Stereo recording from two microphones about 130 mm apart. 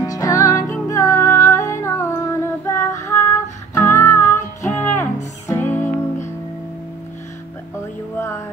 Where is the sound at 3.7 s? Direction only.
20° left (ahead or behind).